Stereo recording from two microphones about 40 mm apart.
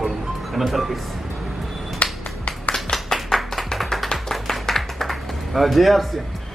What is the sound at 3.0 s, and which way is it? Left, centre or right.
Clapping, centre.